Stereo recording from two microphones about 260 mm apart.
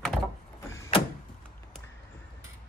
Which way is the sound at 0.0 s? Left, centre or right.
Centre.